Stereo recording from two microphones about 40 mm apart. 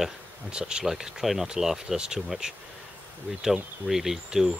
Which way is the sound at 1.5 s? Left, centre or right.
Centre.